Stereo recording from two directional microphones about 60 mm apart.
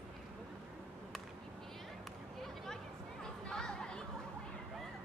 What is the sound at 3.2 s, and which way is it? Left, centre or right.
Chatter, centre.